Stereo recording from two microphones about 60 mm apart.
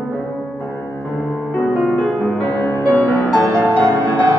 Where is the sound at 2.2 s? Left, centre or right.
Left.